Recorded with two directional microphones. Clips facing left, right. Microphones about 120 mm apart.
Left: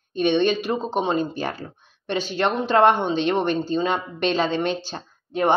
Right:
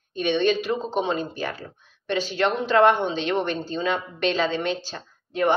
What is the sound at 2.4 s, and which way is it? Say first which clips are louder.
A woman's voice: left 1 dB; 20° left (ahead or behind).